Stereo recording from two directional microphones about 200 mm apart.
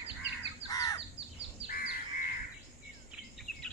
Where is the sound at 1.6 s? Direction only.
45° left (ahead or behind).